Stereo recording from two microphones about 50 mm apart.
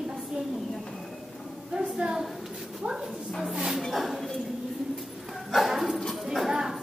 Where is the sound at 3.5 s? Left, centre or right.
Centre.